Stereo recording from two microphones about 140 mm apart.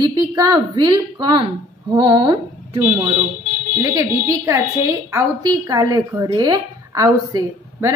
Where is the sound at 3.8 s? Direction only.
20° right (ahead or behind).